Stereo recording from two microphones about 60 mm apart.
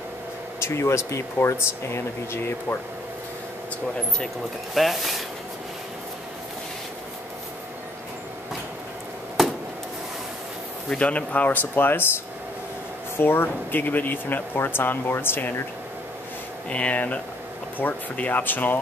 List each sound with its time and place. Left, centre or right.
0.6 s speech: left
4.7 s speech: centre
9.4 s a sound: centre
10.9 s speech: left
13.2 s speech: left
16.6 s speech: left